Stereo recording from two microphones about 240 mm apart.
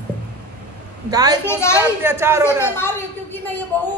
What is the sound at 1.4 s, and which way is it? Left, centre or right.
Speech, centre.